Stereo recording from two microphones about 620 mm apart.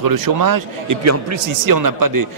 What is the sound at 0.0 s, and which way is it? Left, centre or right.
A man's voice, right.